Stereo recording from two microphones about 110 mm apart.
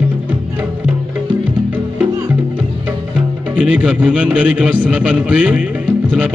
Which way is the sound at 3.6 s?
10° right (ahead or behind).